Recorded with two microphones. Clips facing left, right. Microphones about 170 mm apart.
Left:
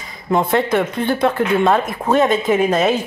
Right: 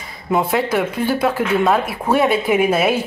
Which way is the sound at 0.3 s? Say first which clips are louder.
Left 2 dB; 5° right (ahead or behind).